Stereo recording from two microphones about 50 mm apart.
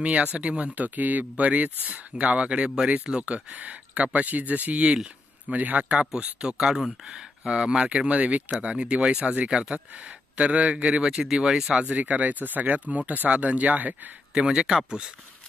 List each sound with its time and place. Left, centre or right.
0.0 s speech: right
11.7 s speech: right
14.3 s speech: centre